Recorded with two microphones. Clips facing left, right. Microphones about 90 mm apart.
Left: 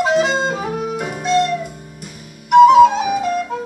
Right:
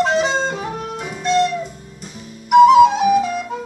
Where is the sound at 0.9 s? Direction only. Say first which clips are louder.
Left 4 dB; 55° left (ahead or behind).